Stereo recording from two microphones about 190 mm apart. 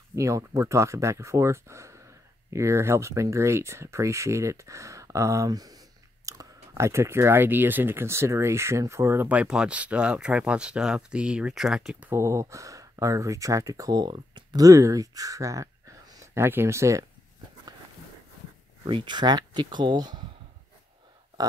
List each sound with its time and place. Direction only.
0.1 s speech: 15° right (ahead or behind)
18.9 s speech: 25° right (ahead or behind)